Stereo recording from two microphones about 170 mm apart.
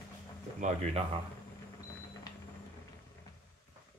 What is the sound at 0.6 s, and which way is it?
Speech, 40° right (ahead or behind).